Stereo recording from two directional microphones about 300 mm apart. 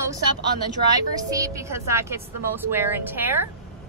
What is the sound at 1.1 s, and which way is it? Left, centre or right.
Speech, centre.